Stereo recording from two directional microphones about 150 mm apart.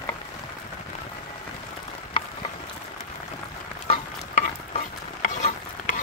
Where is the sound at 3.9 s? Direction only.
45° left (ahead or behind).